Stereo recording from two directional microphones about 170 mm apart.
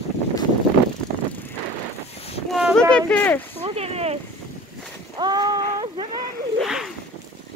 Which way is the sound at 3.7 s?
35° right (ahead or behind).